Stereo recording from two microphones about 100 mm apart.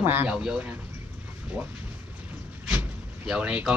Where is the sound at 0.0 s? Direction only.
20° right (ahead or behind).